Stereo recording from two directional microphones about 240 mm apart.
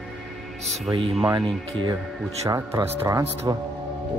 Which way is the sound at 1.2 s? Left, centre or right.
Centre.